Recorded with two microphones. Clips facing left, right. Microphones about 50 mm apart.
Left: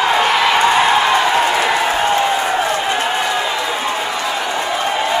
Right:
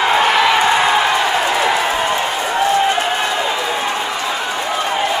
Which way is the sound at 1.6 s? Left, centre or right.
Centre.